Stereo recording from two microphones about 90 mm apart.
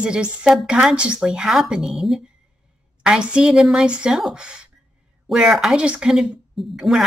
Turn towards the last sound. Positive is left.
turn(degrees=-5)  # may be behind; listen again after turning